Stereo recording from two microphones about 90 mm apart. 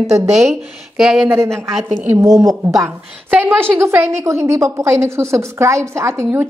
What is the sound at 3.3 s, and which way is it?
A woman's voice, 25° right (ahead or behind).